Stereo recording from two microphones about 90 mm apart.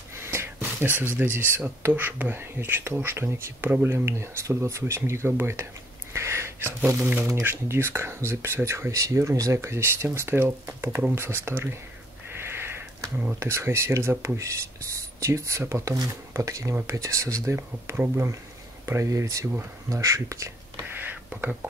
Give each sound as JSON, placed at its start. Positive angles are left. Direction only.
{"t": 0.2, "sound": "a sound", "side_deg": -30}
{"t": 1.0, "sound": "speech", "side_deg": -20}
{"t": 6.1, "sound": "a sound", "side_deg": -30}
{"t": 7.4, "sound": "speech", "side_deg": -25}
{"t": 12.4, "sound": "sniff", "side_deg": -25}
{"t": 13.4, "sound": "speech", "side_deg": -30}
{"t": 19.9, "sound": "whispering", "side_deg": -35}